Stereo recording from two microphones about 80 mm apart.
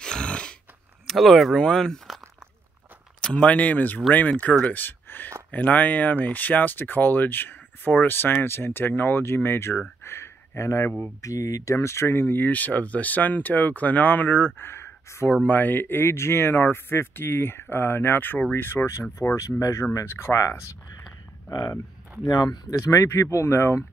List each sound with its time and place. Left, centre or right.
0.0 s a sound: centre
1.0 s speech: centre
3.2 s speech: centre; by 9.8 s left
10.0 s a sound: left
11.1 s speech: left
15.4 s speech: left
21.5 s speech: left